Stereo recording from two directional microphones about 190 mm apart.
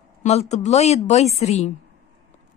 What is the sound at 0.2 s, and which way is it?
A woman's voice, 35° left (ahead or behind).